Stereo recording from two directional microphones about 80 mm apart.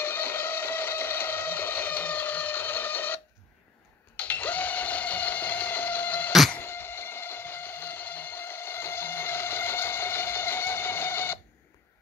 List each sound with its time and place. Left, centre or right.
0.0 s music: left
4.2 s a sound: left
6.6 s music: left